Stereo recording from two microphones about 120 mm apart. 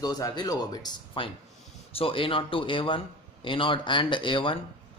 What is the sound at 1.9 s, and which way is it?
A man's voice, 50° left (ahead or behind).